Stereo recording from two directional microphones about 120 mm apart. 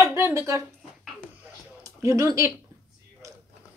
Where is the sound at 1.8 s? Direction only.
25° right (ahead or behind).